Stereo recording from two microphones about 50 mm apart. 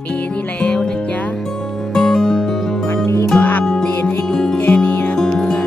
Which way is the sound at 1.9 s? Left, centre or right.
Centre.